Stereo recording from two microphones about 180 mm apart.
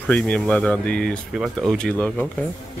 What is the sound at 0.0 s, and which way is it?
Speech, 5° left (ahead or behind).